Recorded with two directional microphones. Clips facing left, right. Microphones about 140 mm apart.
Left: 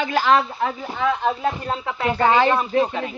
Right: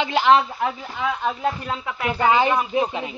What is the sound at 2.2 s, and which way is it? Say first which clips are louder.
Speech: left 1 dB; 15° right (ahead or behind).